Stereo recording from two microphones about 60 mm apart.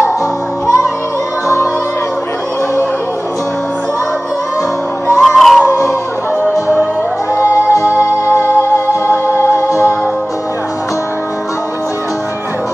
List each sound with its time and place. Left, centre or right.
5.2 s music: centre
7.8 s music: right
8.7 s music: left